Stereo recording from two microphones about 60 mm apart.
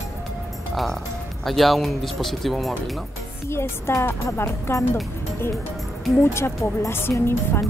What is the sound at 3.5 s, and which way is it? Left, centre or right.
Speech, left.